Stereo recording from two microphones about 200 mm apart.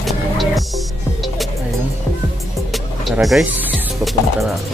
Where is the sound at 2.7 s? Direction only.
Centre (ahead or behind).